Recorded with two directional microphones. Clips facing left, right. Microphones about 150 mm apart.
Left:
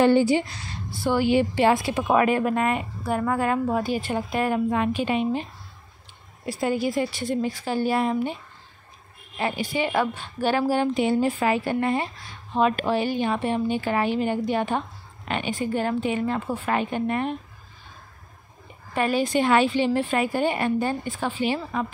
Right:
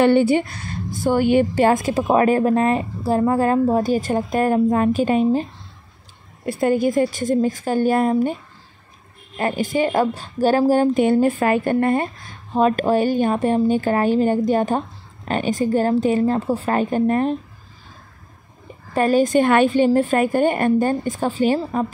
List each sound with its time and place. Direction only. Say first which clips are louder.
0.0 s a woman's voice: right 3 dB; 60° right (ahead or behind); by 5.5 s 40° right (ahead or behind)
6.4 s speech: right 6 dB; 55° right (ahead or behind)
9.4 s a woman's voice: right 6 dB; 50° right (ahead or behind)
18.9 s speech: right 6 dB; 45° right (ahead or behind)